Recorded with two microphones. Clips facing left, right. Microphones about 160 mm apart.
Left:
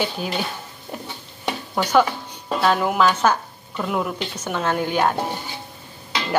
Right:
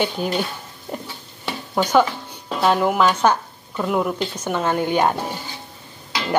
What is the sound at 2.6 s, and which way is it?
A woman's voice, 5° right (ahead or behind).